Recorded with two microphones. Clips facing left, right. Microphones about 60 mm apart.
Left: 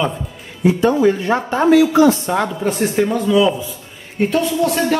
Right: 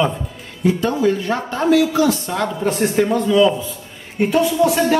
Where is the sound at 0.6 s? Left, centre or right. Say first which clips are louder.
Left 3 dB; centre.